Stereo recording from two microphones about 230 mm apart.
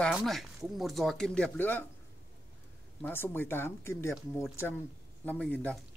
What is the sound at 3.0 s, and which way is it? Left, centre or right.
Speech, centre.